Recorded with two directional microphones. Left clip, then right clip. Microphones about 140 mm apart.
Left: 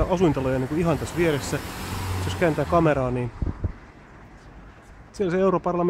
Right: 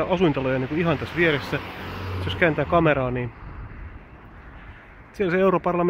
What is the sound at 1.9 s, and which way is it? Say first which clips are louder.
Vehicle: left 1 dB; 45° left (ahead or behind).